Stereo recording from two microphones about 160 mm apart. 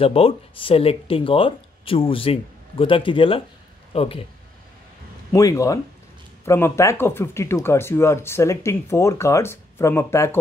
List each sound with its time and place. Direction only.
0.0 s speech: 35° left (ahead or behind)
5.3 s speech: 20° left (ahead or behind)